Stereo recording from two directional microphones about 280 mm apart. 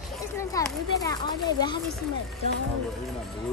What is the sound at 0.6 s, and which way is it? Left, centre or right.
Speech, centre.